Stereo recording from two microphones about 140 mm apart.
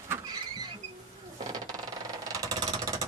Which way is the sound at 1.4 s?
25° right (ahead or behind).